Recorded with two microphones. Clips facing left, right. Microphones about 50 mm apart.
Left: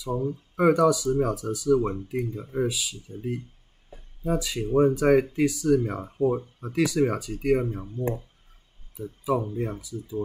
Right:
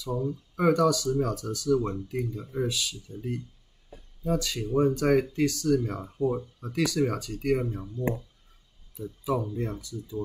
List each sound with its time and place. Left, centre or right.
0.1 s speech: left
0.6 s speech: centre
2.6 s speech: centre
3.2 s speech: left
3.9 s a sound: left
4.4 s speech: centre
5.9 s speech: left
6.7 s speech: centre
8.0 s speech: left
9.6 s speech: centre